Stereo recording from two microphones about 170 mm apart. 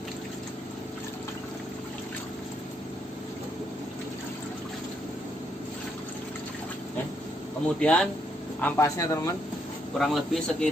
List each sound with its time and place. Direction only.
7.8 s a man's voice: 5° left (ahead or behind)
9.9 s speech: centre (ahead or behind)